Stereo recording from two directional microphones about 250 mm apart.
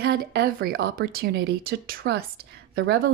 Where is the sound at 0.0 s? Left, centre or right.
Right.